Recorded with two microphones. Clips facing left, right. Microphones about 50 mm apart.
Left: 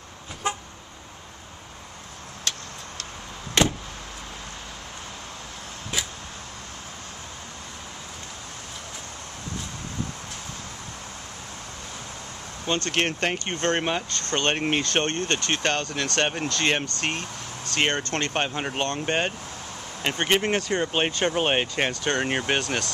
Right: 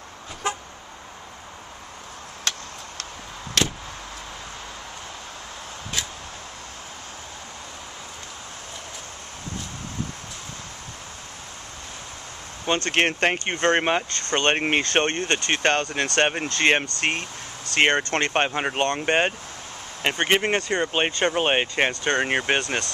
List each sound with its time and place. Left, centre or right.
3.6 s vehicle: left
12.6 s speech: right
20.7 s speech: centre